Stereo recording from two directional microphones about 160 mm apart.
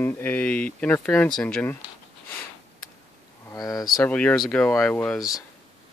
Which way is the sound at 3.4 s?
25° left (ahead or behind).